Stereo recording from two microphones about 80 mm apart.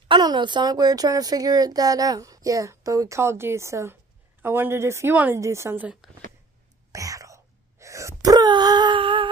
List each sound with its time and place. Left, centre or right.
0.1 s a woman's voice: right
6.0 s speech: centre
6.9 s wail: right